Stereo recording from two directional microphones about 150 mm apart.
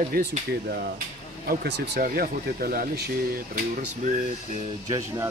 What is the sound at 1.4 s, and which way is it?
Speech, 90° right.